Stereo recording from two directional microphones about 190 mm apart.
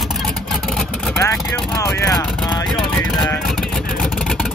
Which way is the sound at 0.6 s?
Centre (ahead or behind).